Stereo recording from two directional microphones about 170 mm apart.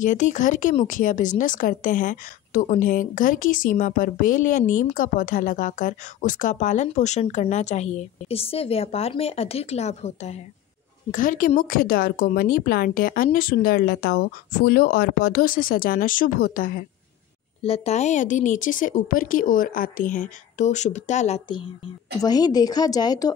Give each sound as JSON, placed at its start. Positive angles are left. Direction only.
{"t": 0.0, "sound": "a woman's voice", "side_deg": 45}
{"t": 11.1, "sound": "a woman's voice", "side_deg": 50}
{"t": 17.6, "sound": "a woman's voice", "side_deg": 35}
{"t": 22.2, "sound": "a woman's voice", "side_deg": 20}